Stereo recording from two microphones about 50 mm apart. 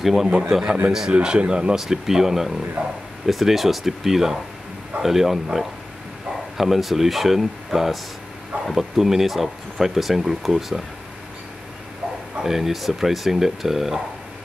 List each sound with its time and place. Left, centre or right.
0.0 s speech: centre
1.8 s speech: centre
12.4 s speech: centre